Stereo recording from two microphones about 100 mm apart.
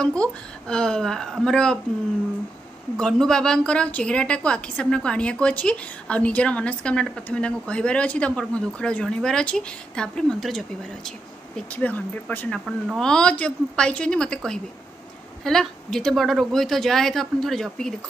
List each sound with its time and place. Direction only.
0.0 s a woman's voice: 10° left (ahead or behind)
3.0 s a woman's voice: 5° left (ahead or behind)
11.7 s a woman's voice: 15° left (ahead or behind)